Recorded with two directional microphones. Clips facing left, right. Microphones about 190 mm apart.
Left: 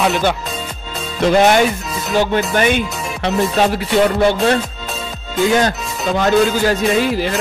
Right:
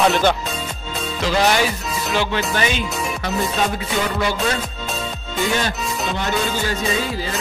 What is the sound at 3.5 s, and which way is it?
Music, 75° left (ahead or behind).